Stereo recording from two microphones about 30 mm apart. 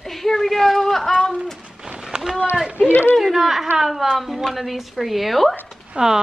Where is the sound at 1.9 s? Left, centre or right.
Right.